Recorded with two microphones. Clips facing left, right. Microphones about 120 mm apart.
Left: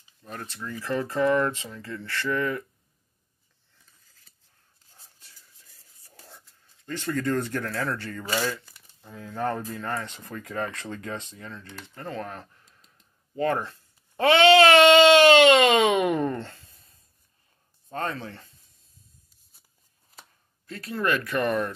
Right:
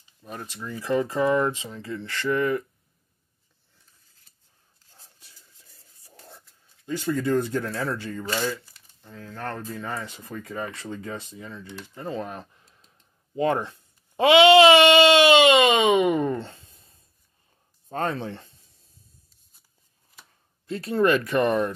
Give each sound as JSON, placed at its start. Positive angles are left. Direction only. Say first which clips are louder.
{"t": 0.2, "sound": "speech", "louder": "right 1 dB", "side_deg": -15}
{"t": 6.1, "sound": "a sound", "louder": "right 3 dB", "side_deg": 0}
{"t": 6.9, "sound": "speech", "louder": "right 3 dB", "side_deg": -10}
{"t": 9.0, "sound": "speech", "louder": "left 5 dB", "side_deg": 10}
{"t": 16.7, "sound": "writing", "louder": "right 2 dB", "side_deg": -30}
{"t": 17.8, "sound": "speech", "louder": "right 4 dB", "side_deg": -30}
{"t": 20.6, "sound": "speech", "louder": "right 6 dB", "side_deg": -30}